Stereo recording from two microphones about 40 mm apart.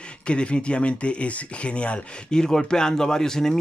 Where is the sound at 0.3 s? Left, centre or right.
Left.